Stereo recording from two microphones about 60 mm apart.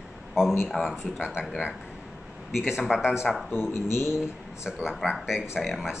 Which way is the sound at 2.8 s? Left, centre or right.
Centre.